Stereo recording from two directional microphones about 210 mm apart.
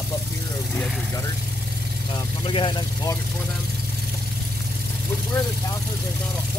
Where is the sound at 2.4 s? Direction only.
25° left (ahead or behind).